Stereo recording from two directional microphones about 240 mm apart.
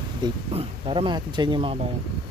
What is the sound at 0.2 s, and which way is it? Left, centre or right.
Speech, right.